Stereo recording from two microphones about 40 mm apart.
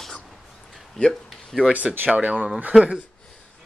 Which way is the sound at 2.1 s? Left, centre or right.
Right.